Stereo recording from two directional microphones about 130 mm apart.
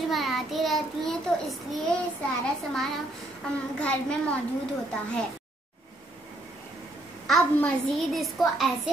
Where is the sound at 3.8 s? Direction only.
10° left (ahead or behind).